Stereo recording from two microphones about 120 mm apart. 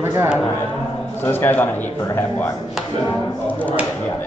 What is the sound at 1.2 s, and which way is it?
Speech, 20° left (ahead or behind).